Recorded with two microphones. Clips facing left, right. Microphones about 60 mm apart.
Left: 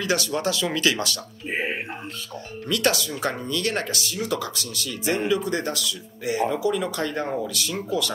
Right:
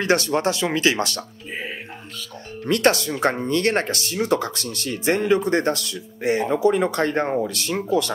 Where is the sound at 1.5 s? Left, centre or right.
Left.